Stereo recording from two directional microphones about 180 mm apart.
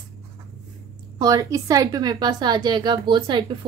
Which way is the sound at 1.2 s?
20° right (ahead or behind).